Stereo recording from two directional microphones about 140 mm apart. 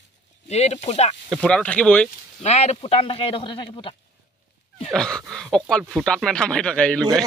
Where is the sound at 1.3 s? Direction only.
5° left (ahead or behind).